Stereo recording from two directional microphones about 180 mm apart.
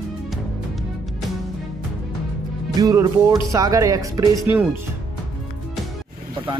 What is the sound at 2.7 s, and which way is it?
Speech, 20° right (ahead or behind).